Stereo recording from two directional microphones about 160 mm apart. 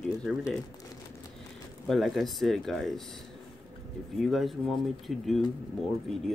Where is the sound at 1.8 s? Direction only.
Centre (ahead or behind).